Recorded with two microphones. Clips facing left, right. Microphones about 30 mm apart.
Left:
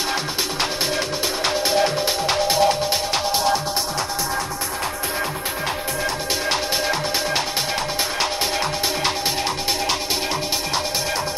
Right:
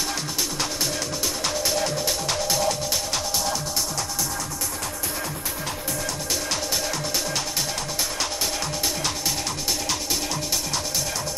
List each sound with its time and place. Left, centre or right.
1.4 s music: left
6.5 s music: left